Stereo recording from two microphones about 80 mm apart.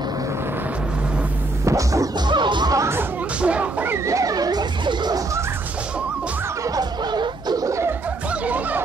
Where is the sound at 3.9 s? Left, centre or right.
Right.